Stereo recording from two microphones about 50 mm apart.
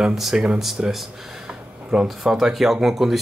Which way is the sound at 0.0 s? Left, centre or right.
Centre.